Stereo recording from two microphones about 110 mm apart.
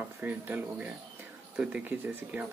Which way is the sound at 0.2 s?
15° right (ahead or behind).